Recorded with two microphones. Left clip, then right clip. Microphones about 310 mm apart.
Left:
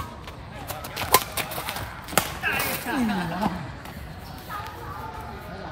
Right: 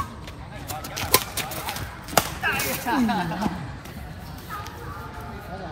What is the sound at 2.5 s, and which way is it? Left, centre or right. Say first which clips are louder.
Music: even; centre.